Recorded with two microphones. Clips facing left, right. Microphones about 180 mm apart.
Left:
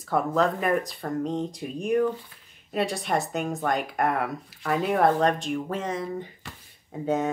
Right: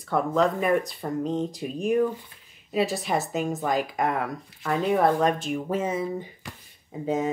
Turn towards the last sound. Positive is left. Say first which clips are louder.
# left 1 dB
turn(degrees=0)  # may be behind; listen again after turning